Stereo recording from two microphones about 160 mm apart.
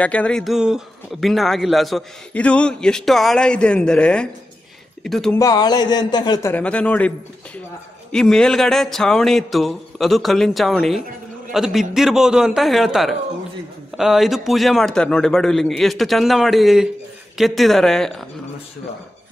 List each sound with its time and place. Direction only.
0.0 s a man's voice: 10° left (ahead or behind)
5.4 s speech: 25° left (ahead or behind)
6.5 s a man's voice: 10° left (ahead or behind)